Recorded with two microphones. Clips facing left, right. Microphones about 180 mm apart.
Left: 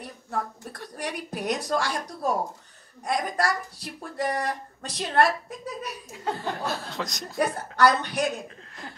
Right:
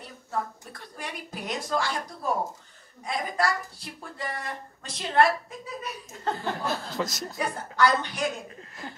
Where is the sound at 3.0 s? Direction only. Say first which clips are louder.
Left 2 dB; 70° left (ahead or behind).